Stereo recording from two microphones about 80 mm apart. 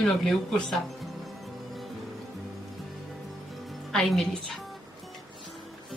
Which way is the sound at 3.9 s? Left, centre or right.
Centre.